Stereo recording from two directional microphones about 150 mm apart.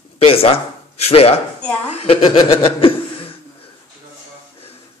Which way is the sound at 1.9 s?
40° left (ahead or behind).